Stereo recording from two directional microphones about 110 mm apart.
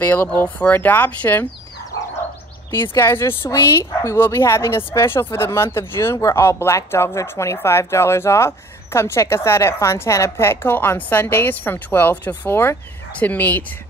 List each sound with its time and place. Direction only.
0.0 s speech: 15° left (ahead or behind)
2.7 s speech: 20° left (ahead or behind)